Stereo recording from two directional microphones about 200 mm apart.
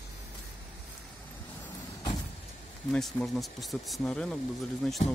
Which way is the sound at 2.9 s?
5° left (ahead or behind).